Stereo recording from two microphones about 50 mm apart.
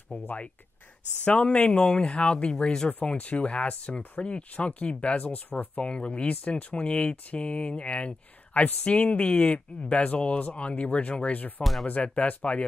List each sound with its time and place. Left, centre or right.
0.1 s speech: left
5.8 s speech: left